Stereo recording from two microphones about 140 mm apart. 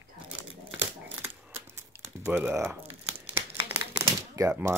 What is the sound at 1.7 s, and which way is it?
Crumpling, 15° right (ahead or behind).